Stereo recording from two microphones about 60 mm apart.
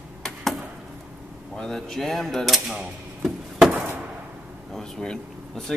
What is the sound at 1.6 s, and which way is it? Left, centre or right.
Speech, centre.